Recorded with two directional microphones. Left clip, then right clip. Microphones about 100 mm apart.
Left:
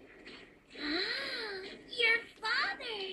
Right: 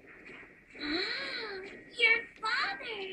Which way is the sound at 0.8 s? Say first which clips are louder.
Right 1 dB; 30° left (ahead or behind).